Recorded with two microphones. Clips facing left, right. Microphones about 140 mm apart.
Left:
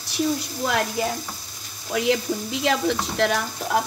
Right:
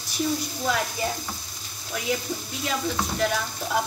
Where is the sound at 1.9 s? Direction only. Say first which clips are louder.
Left 6 dB; 90° left.